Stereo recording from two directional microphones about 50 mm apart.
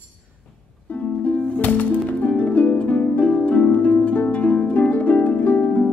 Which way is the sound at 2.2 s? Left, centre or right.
Left.